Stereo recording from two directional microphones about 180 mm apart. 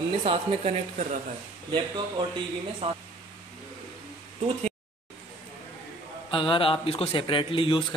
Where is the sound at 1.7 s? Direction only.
25° right (ahead or behind).